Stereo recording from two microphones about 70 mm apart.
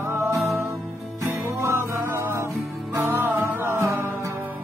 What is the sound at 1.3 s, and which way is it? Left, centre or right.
Music, right.